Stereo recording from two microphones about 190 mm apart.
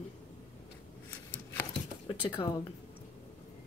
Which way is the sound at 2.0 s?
25° left (ahead or behind).